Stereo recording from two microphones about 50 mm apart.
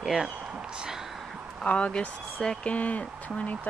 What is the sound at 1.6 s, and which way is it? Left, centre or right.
Speech, left.